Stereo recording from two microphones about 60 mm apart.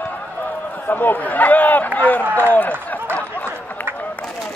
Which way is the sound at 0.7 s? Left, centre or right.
Left.